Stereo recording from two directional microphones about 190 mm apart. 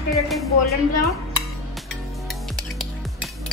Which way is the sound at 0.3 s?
Centre (ahead or behind).